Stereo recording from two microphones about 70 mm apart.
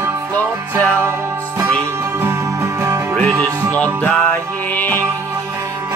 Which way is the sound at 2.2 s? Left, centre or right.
Right.